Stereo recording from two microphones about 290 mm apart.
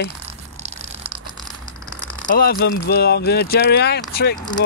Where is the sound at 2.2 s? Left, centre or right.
Left.